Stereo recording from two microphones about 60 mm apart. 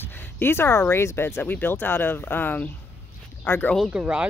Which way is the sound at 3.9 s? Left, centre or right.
Centre.